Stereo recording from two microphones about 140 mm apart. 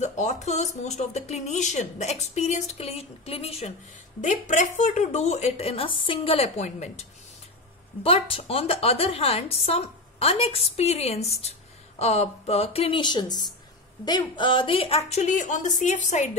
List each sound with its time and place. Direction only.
0.0 s speech: 55° left (ahead or behind)
4.2 s speech: 60° left (ahead or behind)
8.0 s speech: 40° left (ahead or behind); by 16.3 s 60° left (ahead or behind)